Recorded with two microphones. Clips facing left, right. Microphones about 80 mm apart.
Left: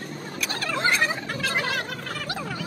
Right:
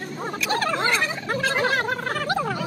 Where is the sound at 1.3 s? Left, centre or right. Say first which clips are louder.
Right 5 dB; right.